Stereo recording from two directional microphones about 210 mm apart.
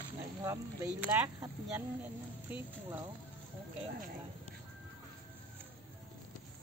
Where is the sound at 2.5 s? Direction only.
10° right (ahead or behind).